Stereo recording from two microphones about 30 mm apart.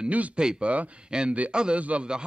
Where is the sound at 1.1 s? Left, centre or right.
Right.